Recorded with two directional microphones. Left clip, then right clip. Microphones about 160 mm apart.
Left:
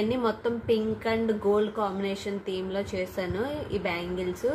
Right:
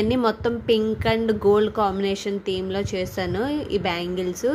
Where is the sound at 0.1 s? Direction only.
50° right (ahead or behind).